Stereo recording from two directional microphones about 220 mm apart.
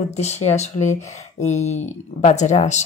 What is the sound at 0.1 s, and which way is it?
Speech, 30° left (ahead or behind).